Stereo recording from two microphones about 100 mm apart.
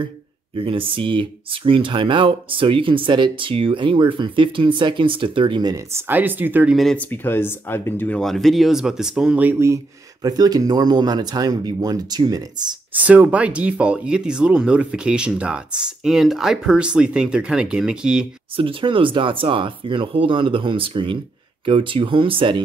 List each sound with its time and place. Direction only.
0.6 s speech: 65° right (ahead or behind)
5.9 s speech: 20° right (ahead or behind)
6.7 s speech: centre (ahead or behind)
7.0 s speech: 20° left (ahead or behind)
8.2 s speech: centre (ahead or behind); by 9.6 s 15° right (ahead or behind)
10.2 s speech: 40° right (ahead or behind)
13.0 s speech: 15° right (ahead or behind)
18.6 s speech: 60° right (ahead or behind)